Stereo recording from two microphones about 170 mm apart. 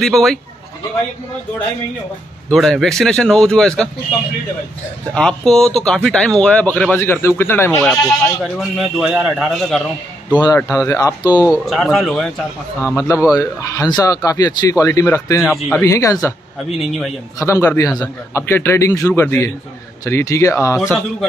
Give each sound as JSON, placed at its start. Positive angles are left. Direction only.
{"t": 0.0, "sound": "speech", "side_deg": 0}
{"t": 2.5, "sound": "speech", "side_deg": 0}
{"t": 5.1, "sound": "a man's voice", "side_deg": 5}
{"t": 8.5, "sound": "speech", "side_deg": 0}
{"t": 10.3, "sound": "speech", "side_deg": 20}
{"t": 11.5, "sound": "speech", "side_deg": 0}
{"t": 12.9, "sound": "speech", "side_deg": 20}
{"t": 15.4, "sound": "speech", "side_deg": 0}
{"t": 15.8, "sound": "a man's voice", "side_deg": 20}
{"t": 17.4, "sound": "a man's voice", "side_deg": 15}